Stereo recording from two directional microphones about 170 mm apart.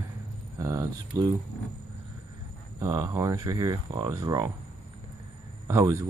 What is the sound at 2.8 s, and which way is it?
Speech, 20° right (ahead or behind).